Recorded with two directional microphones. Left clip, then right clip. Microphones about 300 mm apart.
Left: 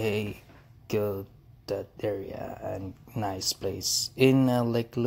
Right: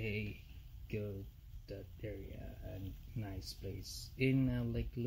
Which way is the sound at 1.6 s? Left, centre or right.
Left.